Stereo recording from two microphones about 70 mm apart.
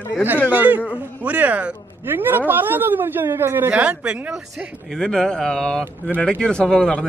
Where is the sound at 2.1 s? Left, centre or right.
Right.